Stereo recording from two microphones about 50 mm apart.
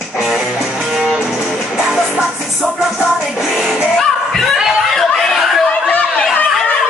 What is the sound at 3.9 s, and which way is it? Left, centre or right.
Music, centre.